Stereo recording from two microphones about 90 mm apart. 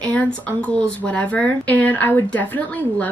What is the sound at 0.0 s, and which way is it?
Speech, 15° left (ahead or behind).